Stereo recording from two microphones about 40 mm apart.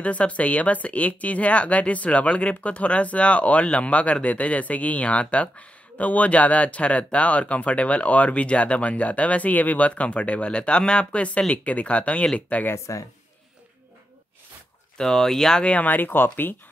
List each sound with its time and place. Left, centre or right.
0.0 s speech: left
15.0 s speech: centre
15.6 s speech: left
15.9 s speech: left